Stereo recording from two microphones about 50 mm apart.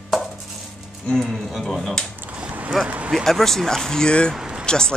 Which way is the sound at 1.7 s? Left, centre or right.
Centre.